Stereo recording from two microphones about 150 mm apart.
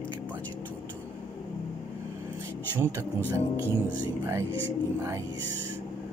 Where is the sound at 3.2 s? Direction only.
15° left (ahead or behind).